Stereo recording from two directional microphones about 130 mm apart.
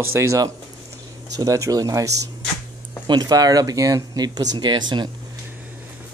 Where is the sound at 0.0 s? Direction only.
20° right (ahead or behind); by 5.1 s 35° right (ahead or behind).